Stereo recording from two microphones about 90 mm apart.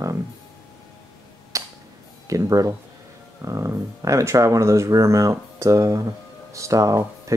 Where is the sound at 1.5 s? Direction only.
35° right (ahead or behind).